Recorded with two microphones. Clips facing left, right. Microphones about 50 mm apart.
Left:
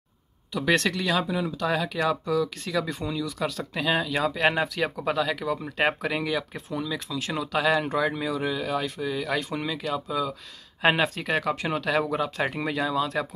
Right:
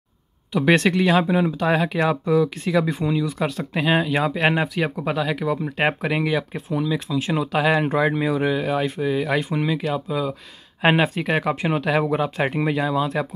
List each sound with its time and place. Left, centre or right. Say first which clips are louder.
0.5 s speech: right 6 dB; right